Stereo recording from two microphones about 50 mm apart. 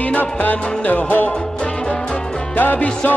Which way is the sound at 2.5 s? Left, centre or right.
Left.